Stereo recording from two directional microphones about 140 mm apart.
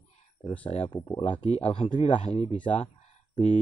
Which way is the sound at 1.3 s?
45° left (ahead or behind).